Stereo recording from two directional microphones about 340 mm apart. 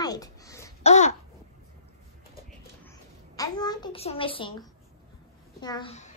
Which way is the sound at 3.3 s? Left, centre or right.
Centre.